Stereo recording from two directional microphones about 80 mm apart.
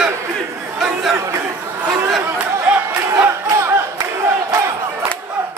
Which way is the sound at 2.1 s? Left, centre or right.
Centre.